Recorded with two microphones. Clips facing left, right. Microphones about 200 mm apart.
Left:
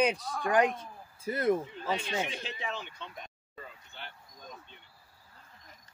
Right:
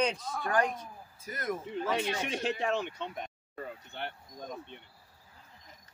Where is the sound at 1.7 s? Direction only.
65° right (ahead or behind).